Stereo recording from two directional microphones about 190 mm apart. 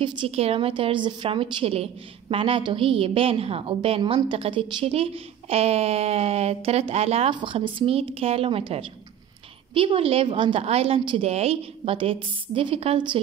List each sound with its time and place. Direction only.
0.0 s a woman's voice: 30° right (ahead or behind)